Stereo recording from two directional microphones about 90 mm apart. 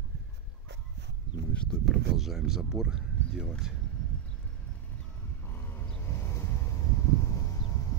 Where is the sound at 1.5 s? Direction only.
5° left (ahead or behind).